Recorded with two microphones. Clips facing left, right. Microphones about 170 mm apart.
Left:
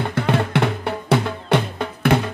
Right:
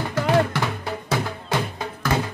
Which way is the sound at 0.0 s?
60° left (ahead or behind).